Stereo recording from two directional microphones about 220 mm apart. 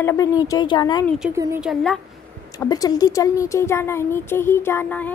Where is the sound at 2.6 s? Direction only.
15° left (ahead or behind).